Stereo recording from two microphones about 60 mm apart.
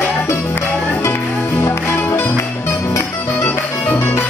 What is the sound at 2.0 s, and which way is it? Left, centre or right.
Music, left.